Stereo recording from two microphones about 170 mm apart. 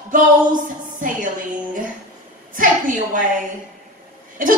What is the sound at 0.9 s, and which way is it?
Speech, 50° right (ahead or behind).